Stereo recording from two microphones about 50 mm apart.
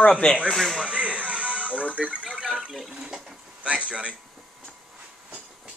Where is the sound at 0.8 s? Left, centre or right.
Right.